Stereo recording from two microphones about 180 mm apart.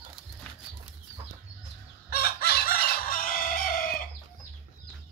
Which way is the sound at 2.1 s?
60° left (ahead or behind).